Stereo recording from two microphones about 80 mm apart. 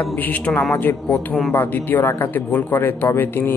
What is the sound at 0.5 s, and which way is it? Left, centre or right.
A man's voice, left.